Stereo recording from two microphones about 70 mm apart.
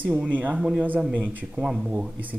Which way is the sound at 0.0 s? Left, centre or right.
Centre.